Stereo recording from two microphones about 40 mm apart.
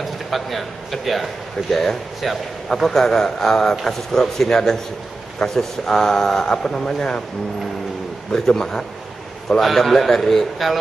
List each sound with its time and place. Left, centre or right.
0.0 s speech: centre
8.3 s speech: centre
9.6 s a man's voice: centre